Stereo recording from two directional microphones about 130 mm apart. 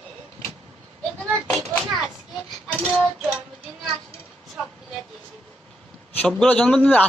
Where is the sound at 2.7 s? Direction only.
10° left (ahead or behind).